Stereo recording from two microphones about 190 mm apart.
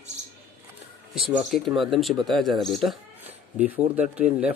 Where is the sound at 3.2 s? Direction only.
10° right (ahead or behind).